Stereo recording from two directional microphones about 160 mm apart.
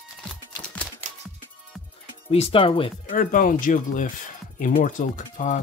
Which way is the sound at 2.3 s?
35° left (ahead or behind).